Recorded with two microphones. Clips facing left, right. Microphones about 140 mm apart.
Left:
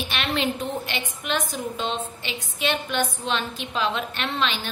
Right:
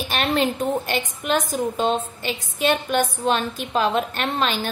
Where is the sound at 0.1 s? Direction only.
45° right (ahead or behind).